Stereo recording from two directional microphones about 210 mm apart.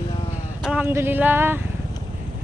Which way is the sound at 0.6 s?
5° right (ahead or behind).